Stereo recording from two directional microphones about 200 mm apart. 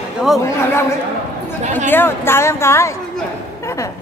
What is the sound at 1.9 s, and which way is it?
Speech, 10° left (ahead or behind).